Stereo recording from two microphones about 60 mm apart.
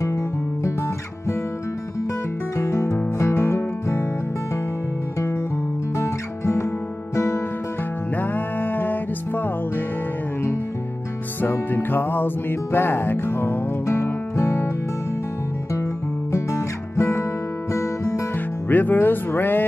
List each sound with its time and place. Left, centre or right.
2.5 s music: left
5.9 s music: left
8.2 s music: left
11.4 s music: left
16.3 s music: left
18.7 s speech: left